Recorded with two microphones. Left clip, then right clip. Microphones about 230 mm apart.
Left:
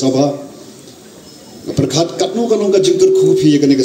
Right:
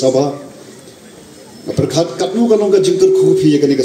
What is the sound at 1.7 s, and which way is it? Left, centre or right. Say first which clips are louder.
A man's voice: even; left.